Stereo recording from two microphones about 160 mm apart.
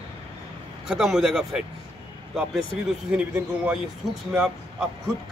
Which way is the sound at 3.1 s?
5° right (ahead or behind).